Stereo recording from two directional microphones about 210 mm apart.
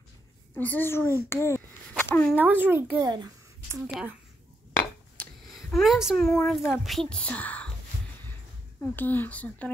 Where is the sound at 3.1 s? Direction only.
15° right (ahead or behind).